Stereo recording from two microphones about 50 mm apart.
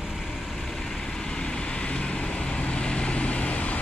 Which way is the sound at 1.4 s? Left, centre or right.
Centre.